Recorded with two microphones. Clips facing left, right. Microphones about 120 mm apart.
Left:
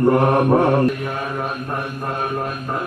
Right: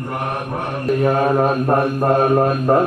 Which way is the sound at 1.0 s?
40° right (ahead or behind).